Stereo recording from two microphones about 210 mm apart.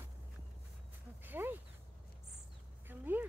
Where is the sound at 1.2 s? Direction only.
10° right (ahead or behind).